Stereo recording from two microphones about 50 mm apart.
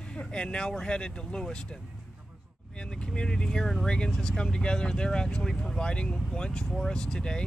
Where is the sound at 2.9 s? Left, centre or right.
Centre.